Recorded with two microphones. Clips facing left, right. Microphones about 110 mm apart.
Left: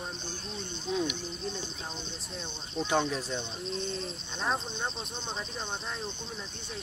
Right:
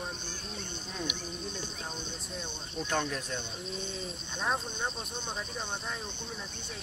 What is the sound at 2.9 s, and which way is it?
Speech, 10° left (ahead or behind).